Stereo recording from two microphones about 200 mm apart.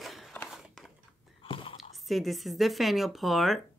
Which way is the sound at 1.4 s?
25° left (ahead or behind).